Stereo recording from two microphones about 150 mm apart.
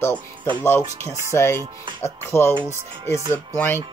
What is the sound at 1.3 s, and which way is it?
Speech, 15° left (ahead or behind).